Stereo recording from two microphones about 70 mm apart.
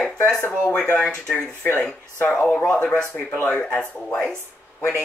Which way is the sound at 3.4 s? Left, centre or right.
Centre.